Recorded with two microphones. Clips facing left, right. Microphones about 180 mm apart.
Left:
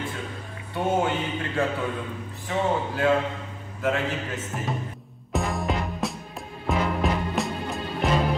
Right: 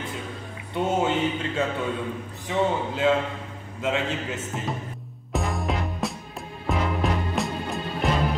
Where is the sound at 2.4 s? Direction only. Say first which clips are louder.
Right 1 dB; 20° right (ahead or behind).